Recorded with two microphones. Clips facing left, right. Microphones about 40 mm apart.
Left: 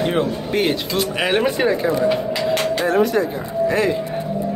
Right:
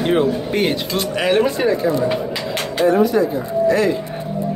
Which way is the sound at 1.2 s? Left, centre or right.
Left.